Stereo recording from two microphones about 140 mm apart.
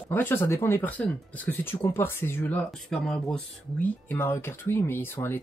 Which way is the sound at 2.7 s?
5° left (ahead or behind).